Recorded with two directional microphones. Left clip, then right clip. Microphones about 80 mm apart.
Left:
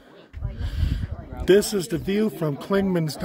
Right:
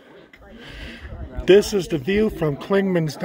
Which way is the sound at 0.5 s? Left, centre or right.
Centre.